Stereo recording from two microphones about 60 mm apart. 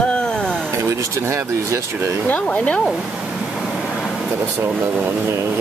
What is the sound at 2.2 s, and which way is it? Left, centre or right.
Speech, left.